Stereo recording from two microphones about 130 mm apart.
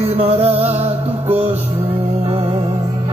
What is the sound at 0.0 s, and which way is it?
Music, 50° right (ahead or behind).